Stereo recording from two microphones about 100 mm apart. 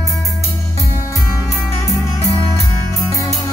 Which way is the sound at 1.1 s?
30° left (ahead or behind).